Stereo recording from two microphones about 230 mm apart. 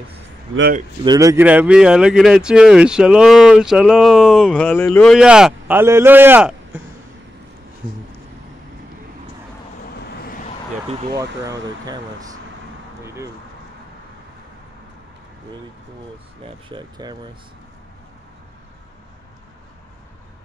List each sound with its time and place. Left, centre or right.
0.6 s speech: right
1.0 s speech: centre
10.1 s vehicle: left
10.9 s speech: centre
16.6 s speech: centre